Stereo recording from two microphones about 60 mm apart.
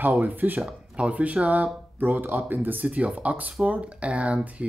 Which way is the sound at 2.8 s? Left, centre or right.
Right.